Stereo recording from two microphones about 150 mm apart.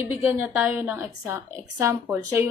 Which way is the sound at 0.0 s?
15° right (ahead or behind).